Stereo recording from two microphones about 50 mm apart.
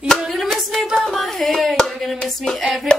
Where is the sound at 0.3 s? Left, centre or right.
Centre.